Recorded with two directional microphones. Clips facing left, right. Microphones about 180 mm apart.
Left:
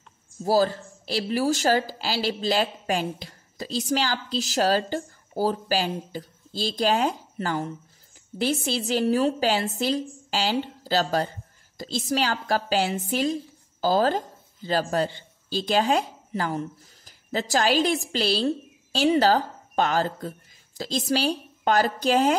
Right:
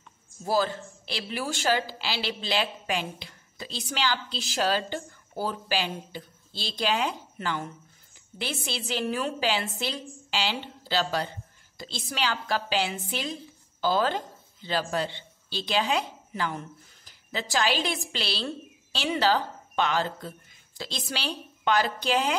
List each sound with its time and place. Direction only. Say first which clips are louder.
0.5 s a woman's voice: left 5 dB; 35° left (ahead or behind)